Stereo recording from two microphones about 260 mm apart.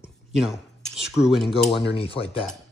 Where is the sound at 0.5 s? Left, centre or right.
Centre.